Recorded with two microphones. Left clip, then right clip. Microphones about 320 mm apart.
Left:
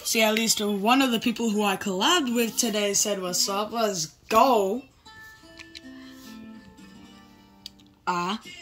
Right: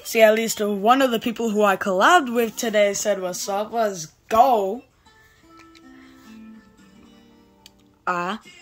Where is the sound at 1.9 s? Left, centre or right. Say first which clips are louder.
Right 7 dB; right.